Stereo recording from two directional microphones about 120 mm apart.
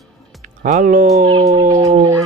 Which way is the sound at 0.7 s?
85° right.